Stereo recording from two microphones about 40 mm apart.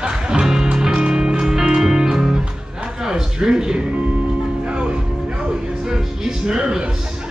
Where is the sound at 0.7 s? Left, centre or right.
Centre.